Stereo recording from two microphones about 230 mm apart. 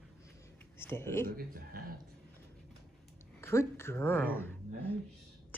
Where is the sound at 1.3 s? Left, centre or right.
Right.